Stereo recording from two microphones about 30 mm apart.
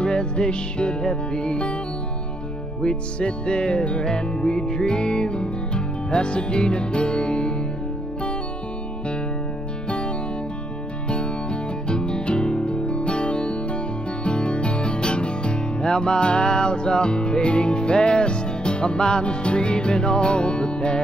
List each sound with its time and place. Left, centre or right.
0.0 s music: left
2.8 s music: left
9.8 s music: left